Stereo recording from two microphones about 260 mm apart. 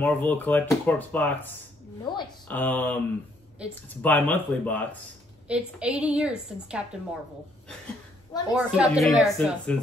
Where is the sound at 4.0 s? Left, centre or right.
Centre.